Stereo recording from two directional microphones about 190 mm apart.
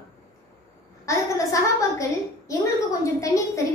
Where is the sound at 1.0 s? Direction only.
15° left (ahead or behind).